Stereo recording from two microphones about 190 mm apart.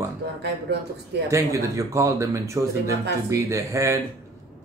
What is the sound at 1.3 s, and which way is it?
Speech, 15° right (ahead or behind).